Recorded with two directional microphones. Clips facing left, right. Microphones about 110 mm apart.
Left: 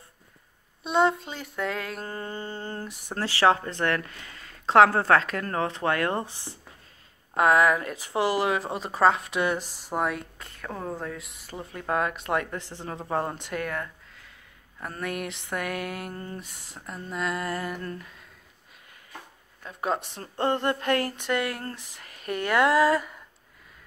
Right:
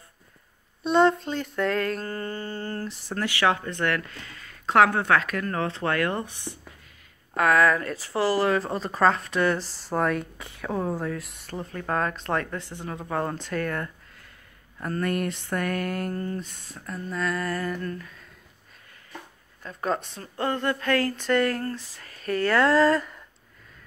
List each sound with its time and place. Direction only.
0.8 s speech: 10° left (ahead or behind)
3.2 s speech: 30° left (ahead or behind)
19.6 s speech: 10° left (ahead or behind)
20.2 s speech: 30° left (ahead or behind); by 23.2 s 10° left (ahead or behind)